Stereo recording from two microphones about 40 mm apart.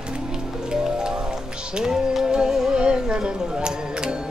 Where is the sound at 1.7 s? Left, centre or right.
Centre.